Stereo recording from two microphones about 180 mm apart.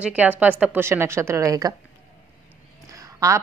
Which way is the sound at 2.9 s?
15° right (ahead or behind).